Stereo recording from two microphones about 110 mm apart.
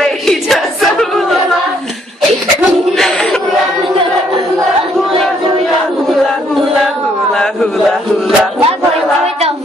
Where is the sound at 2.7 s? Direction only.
Centre (ahead or behind).